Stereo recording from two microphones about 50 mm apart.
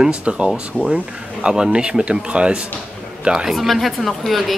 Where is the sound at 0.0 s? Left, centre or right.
Right.